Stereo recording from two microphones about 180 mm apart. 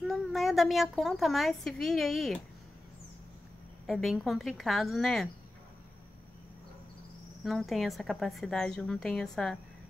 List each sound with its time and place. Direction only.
0.0 s a woman's voice: centre (ahead or behind)
3.8 s a woman's voice: centre (ahead or behind)
7.4 s a woman's voice: centre (ahead or behind)